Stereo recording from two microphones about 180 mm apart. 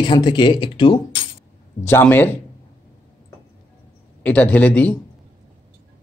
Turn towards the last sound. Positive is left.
turn(degrees=10)  # may be behind; listen again after turning